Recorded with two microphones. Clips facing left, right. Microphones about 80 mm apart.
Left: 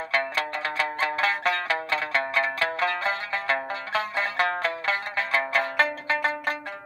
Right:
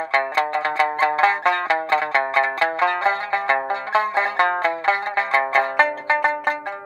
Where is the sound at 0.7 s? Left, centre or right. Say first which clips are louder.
Right 8 dB; right.